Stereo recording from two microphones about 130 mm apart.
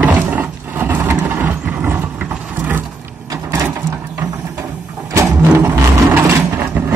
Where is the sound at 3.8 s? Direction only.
15° right (ahead or behind).